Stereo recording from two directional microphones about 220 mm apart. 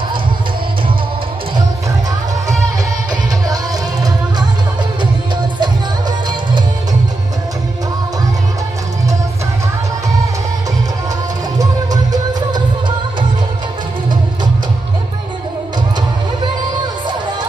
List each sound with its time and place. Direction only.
5.6 s music: 20° right (ahead or behind)
11.5 s music: 15° right (ahead or behind)